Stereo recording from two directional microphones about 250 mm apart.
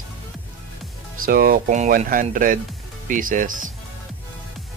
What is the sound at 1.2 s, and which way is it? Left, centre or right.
Speech, right.